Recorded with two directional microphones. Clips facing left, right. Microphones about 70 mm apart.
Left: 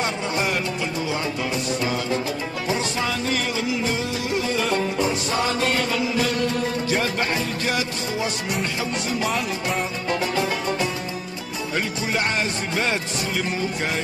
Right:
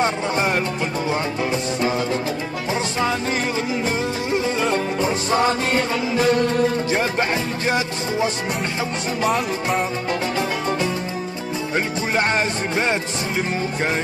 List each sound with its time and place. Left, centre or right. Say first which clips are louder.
0.0 s music: right 4 dB; right
11.7 s music: right 3 dB; right